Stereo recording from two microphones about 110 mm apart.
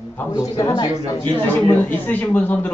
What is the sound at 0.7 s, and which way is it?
Speech, 30° left (ahead or behind).